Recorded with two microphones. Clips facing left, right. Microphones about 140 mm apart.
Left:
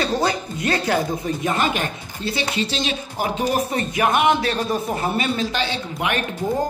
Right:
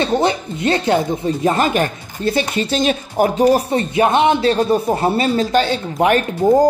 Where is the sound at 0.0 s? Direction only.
25° right (ahead or behind); by 3.4 s 50° right (ahead or behind).